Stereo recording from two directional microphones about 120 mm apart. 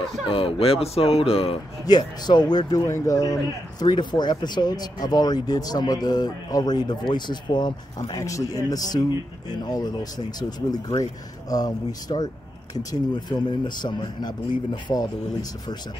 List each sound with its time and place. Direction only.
0.3 s speech: 50° left (ahead or behind)
1.9 s speech: 35° left (ahead or behind)